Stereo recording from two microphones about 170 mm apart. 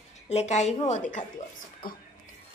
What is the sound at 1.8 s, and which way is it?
Speech, 55° left (ahead or behind).